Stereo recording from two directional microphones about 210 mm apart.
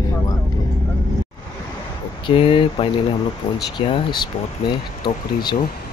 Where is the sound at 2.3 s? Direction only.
25° left (ahead or behind).